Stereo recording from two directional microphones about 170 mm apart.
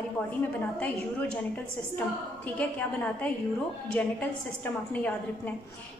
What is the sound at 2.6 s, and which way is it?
A woman's voice, 10° left (ahead or behind).